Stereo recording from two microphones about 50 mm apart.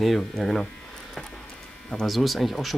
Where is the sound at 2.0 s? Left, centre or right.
Centre.